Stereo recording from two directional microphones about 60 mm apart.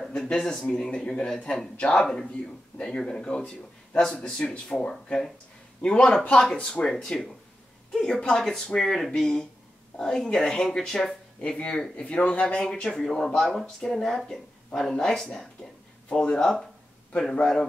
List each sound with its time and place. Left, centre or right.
0.1 s speech: centre
12.7 s speech: centre